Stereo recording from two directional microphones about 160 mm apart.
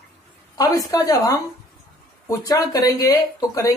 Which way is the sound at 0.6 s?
25° left (ahead or behind).